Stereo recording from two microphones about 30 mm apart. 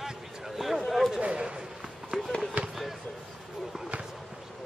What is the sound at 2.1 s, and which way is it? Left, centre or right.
Fireworks, centre.